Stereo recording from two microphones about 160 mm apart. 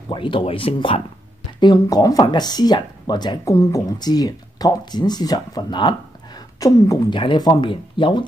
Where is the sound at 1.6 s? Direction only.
25° left (ahead or behind).